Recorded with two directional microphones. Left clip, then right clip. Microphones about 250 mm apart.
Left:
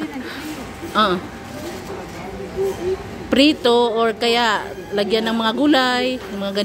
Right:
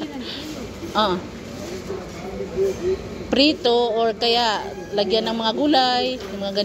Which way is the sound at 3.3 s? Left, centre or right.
Centre.